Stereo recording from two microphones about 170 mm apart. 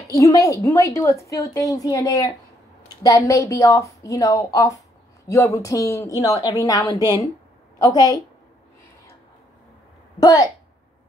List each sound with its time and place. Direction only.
0.1 s a woman's voice: 20° left (ahead or behind)
10.2 s a woman's voice: 25° left (ahead or behind)